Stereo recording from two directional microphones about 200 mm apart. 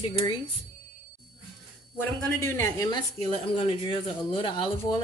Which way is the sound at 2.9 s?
30° left (ahead or behind).